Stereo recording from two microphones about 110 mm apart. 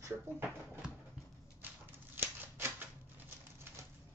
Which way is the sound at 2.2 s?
20° right (ahead or behind).